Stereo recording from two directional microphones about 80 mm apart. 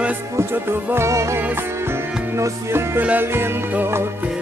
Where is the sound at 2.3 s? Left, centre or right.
Right.